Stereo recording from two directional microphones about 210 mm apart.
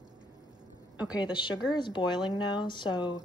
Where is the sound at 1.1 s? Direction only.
20° left (ahead or behind).